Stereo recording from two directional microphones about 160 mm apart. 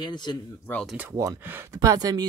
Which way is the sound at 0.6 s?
10° left (ahead or behind).